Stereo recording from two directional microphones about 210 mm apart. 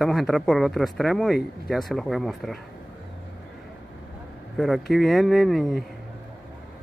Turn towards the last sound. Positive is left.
turn(degrees=0)  # may be behind; listen again after turning